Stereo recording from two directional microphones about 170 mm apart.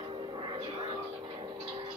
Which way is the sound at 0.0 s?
30° right (ahead or behind).